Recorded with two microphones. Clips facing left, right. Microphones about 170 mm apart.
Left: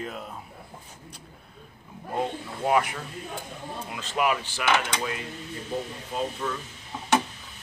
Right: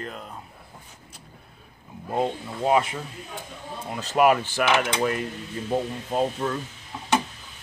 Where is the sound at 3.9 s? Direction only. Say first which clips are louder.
Right 7 dB; 45° right (ahead or behind).